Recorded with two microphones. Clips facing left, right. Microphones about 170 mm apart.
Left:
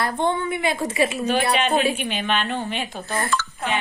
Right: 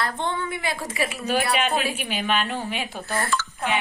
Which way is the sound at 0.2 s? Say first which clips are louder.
Left 5 dB; 20° left (ahead or behind).